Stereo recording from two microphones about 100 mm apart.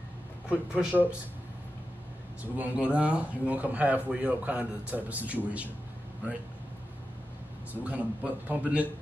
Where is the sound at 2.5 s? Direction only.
15° right (ahead or behind).